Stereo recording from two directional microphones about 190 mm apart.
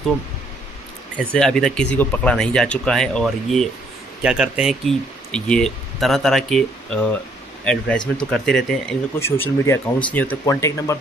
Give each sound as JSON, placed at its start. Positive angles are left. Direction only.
{"t": 1.3, "sound": "speech", "side_deg": 5}
{"t": 9.1, "sound": "speech", "side_deg": 15}